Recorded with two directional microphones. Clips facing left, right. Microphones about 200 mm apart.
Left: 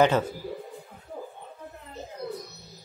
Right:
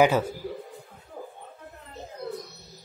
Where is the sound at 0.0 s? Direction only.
10° right (ahead or behind).